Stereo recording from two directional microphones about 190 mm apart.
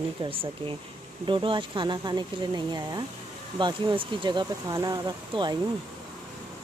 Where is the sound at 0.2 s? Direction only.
30° right (ahead or behind).